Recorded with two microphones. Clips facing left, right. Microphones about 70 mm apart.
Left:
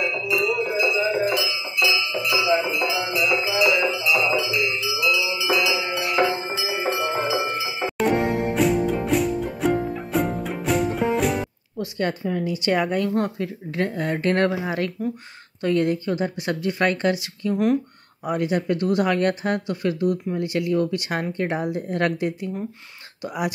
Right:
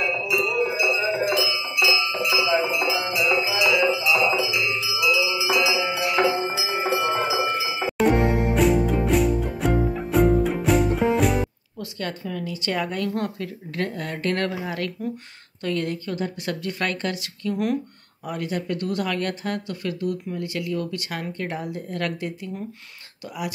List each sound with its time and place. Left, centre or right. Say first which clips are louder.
0.3 s music: left 1 dB; centre
4.8 s music: even; centre
11.8 s speech: left 6 dB; centre